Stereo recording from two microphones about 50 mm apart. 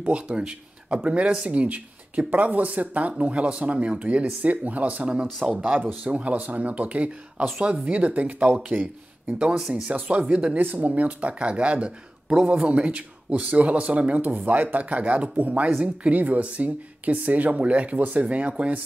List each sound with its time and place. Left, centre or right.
0.0 s speech: right
9.8 s speech: right